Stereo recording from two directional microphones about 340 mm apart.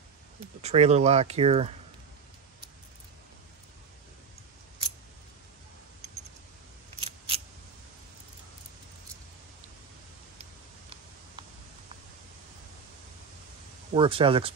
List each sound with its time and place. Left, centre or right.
0.6 s speech: centre
7.0 s scissors: centre
13.9 s speech: centre